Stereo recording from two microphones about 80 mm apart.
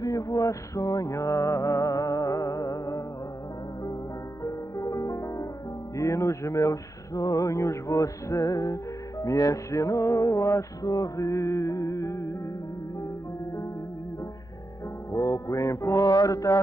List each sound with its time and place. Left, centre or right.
0.0 s music: left
4.4 s music: left
5.9 s a sound: left
9.2 s music: left
15.1 s music: left